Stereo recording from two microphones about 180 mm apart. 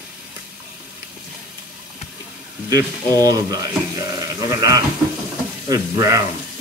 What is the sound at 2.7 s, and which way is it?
Speech, 20° right (ahead or behind).